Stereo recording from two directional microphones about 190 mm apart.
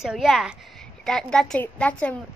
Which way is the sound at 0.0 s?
Centre (ahead or behind).